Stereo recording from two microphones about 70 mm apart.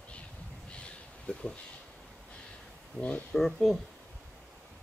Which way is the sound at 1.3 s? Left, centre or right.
Centre.